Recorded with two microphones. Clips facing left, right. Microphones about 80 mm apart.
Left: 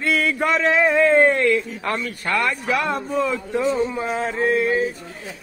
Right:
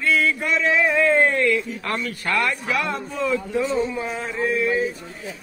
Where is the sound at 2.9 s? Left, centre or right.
Left.